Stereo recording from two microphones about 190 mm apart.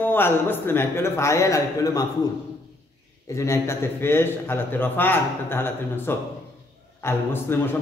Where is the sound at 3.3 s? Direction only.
15° left (ahead or behind).